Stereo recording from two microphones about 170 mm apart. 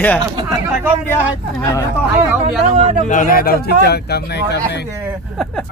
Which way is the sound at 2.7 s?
35° right (ahead or behind).